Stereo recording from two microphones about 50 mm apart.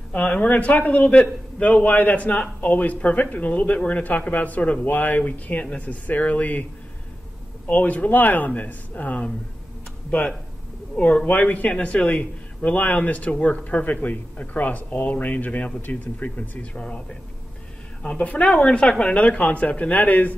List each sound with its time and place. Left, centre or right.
0.1 s a man's voice: left
7.7 s speech: left
11.0 s a man's voice: left
16.7 s a man's voice: centre
18.1 s a man's voice: left